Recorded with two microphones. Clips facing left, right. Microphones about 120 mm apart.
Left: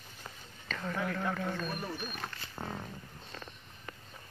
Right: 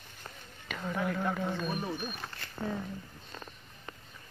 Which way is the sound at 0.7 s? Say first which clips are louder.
Right 2 dB; 10° right (ahead or behind).